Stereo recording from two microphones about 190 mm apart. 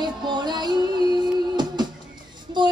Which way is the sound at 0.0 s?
25° right (ahead or behind).